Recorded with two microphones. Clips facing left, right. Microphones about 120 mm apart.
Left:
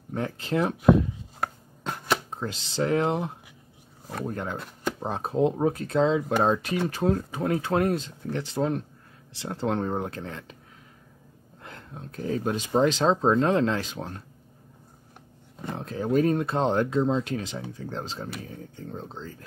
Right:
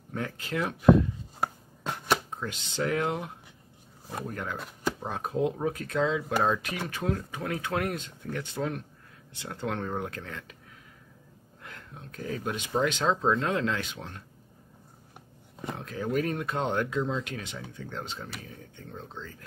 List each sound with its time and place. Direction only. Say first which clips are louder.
0.1 s speech: left 5 dB; 30° left (ahead or behind)
1.4 s chopping: even; centre (ahead or behind)
2.3 s speech: left 3 dB; 30° left (ahead or behind)
4.6 s chopping: left 1 dB; centre (ahead or behind)
5.0 s speech: left 6 dB; 30° left (ahead or behind)
11.6 s speech: left 4 dB; 30° left (ahead or behind)
15.7 s speech: left 5 dB; 30° left (ahead or behind)